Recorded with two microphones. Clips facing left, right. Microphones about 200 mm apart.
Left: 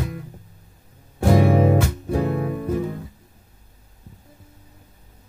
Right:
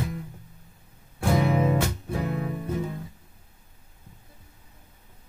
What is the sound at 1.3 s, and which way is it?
Music, 30° left (ahead or behind).